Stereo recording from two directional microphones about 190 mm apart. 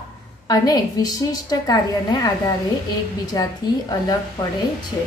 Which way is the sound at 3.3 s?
20° left (ahead or behind).